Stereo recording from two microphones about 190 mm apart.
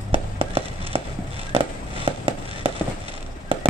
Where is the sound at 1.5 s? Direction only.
30° right (ahead or behind).